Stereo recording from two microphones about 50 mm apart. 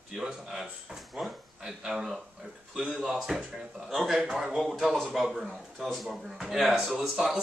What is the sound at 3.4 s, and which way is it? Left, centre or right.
Speech, right.